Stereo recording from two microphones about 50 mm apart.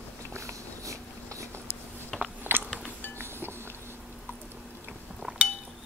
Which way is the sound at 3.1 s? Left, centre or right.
Right.